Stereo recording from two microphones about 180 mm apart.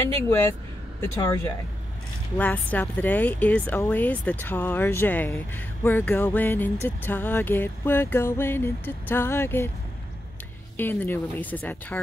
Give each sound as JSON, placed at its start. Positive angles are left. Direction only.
{"t": 0.3, "sound": "speech", "side_deg": 15}
{"t": 10.8, "sound": "speech", "side_deg": 10}